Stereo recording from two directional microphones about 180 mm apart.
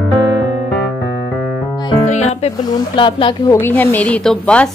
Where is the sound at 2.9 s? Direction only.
25° left (ahead or behind).